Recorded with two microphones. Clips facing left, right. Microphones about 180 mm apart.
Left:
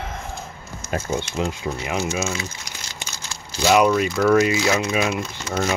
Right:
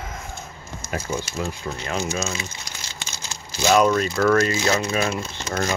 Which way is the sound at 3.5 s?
10° left (ahead or behind).